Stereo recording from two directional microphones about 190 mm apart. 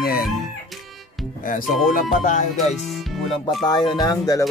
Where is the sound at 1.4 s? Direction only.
45° left (ahead or behind).